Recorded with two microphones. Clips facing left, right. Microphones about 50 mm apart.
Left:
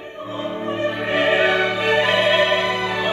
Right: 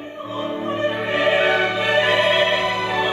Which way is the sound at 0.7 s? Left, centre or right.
Right.